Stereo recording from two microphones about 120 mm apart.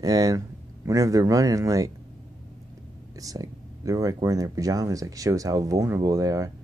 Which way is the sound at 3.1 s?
30° right (ahead or behind).